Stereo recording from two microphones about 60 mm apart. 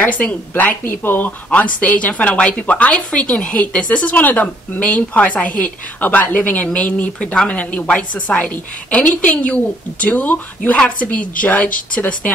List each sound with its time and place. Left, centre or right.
0.0 s speech: left